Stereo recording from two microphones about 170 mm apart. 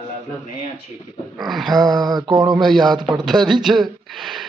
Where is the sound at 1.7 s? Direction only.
25° right (ahead or behind).